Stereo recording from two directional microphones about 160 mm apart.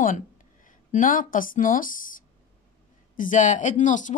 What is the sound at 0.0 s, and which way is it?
A woman's voice, 55° left (ahead or behind).